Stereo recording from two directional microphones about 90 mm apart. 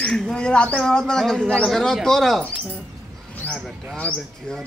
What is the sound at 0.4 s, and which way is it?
Speech, 10° left (ahead or behind).